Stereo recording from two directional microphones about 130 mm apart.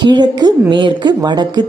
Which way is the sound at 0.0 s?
35° right (ahead or behind).